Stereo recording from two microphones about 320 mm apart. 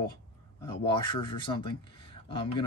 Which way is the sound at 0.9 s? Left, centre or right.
Centre.